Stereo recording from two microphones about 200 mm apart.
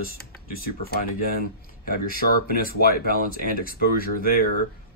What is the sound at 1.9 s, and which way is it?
Speech, 45° left (ahead or behind).